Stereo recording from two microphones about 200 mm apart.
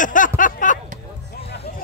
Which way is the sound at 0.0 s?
40° left (ahead or behind).